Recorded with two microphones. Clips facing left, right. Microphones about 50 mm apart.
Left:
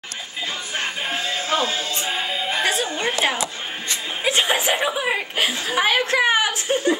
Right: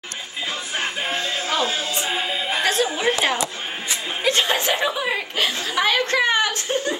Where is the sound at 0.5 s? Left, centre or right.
Centre.